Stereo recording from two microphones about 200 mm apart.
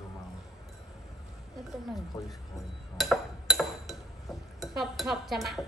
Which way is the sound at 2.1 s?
15° left (ahead or behind).